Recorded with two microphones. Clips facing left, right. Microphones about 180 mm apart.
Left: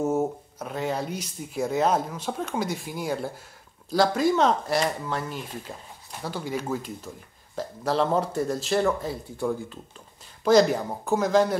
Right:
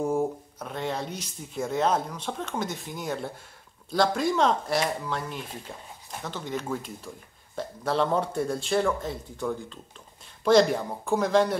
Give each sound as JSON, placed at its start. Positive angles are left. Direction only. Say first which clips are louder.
{"t": 0.0, "sound": "speech", "louder": "left 1 dB", "side_deg": 5}